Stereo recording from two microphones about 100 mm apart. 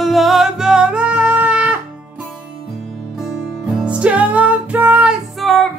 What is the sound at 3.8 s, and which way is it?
Music, 10° right (ahead or behind).